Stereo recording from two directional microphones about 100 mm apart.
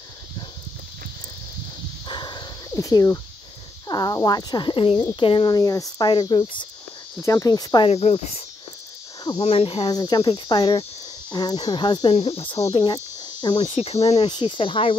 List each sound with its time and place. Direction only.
2.0 s a sound: 45° left (ahead or behind)
2.7 s speech: 35° left (ahead or behind); by 5.5 s 60° left (ahead or behind)
5.5 s cricket: 35° left (ahead or behind); by 6.7 s 55° left (ahead or behind)
7.2 s speech: 35° left (ahead or behind)
7.8 s speech: 85° left
9.4 s speech: 75° left (ahead or behind)
9.8 s cricket: 40° left (ahead or behind)
12.1 s speech: 80° left
12.7 s cricket: 45° left (ahead or behind)
13.7 s speech: 90° left
14.3 s speech: 60° left (ahead or behind)